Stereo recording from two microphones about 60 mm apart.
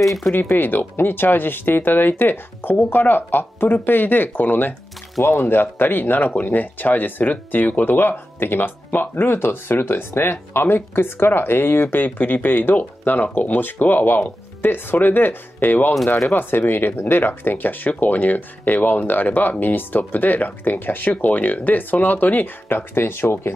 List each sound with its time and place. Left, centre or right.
0.0 s speech: centre
0.3 s speech: left